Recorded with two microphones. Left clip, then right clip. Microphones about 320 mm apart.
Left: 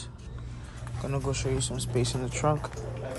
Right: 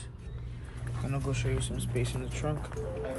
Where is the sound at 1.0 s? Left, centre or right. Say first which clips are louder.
Left 4 dB; centre.